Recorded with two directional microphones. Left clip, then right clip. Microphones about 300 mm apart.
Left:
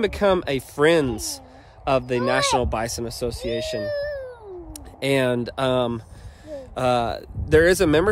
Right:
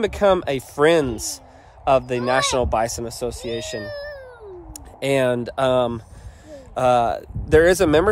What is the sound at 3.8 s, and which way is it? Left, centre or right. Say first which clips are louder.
Cat: left 5 dB; left.